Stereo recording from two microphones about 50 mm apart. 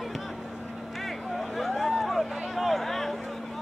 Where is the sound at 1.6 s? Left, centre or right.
Centre.